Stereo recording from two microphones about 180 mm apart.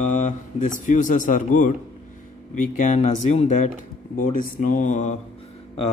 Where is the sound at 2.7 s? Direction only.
40° left (ahead or behind).